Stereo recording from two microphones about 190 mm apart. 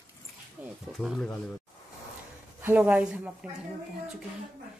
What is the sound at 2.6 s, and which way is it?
Speech, 10° right (ahead or behind).